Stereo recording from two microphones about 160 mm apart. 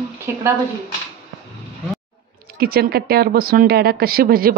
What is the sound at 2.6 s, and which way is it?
A woman's voice, 70° right (ahead or behind).